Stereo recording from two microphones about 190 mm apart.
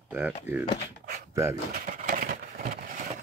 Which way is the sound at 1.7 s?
45° right (ahead or behind).